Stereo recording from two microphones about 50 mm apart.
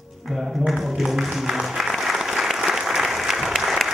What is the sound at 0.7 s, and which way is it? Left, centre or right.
Applause, centre.